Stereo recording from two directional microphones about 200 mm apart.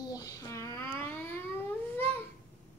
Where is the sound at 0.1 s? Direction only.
15° left (ahead or behind).